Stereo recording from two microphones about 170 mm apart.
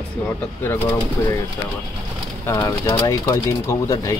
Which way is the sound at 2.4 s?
20° left (ahead or behind).